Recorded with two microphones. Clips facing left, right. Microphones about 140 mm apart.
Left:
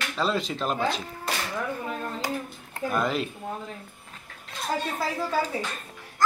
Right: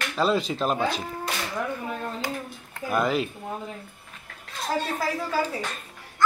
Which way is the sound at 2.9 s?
5° right (ahead or behind).